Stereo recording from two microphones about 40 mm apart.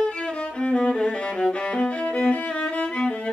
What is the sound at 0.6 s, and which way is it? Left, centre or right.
Music, left.